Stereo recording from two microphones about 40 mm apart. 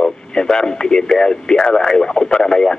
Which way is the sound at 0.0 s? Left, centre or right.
Centre.